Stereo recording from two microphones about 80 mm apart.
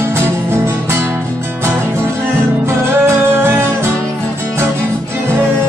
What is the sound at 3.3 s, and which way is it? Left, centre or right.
Music, right.